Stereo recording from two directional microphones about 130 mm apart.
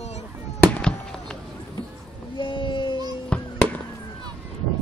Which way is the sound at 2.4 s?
40° left (ahead or behind).